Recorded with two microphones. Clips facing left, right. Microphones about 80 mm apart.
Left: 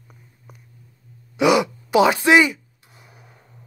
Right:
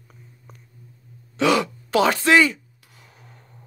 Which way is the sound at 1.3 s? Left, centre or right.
Centre.